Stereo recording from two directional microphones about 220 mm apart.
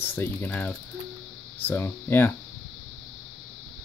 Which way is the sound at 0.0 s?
10° left (ahead or behind).